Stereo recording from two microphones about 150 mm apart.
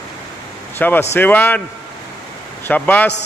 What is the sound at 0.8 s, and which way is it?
Speech, 15° left (ahead or behind).